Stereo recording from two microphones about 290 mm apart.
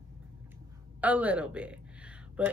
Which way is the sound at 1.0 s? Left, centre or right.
Centre.